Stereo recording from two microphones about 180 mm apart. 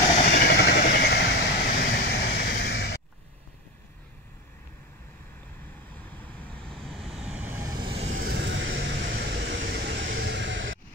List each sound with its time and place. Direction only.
0.1 s vehicle: 40° left (ahead or behind)
0.5 s vehicle: 65° left (ahead or behind)
6.0 s vehicle: 10° left (ahead or behind); by 7.6 s 10° right (ahead or behind)
7.6 s vehicle: 25° right (ahead or behind)
8.2 s vehicle: 65° right (ahead or behind); by 8.8 s 85° right
9.1 s vehicle: 55° right (ahead or behind); by 10.8 s 90° right